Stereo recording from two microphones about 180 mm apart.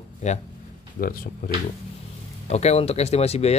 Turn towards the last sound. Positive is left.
turn(degrees=35)  # may be behind; listen again after turning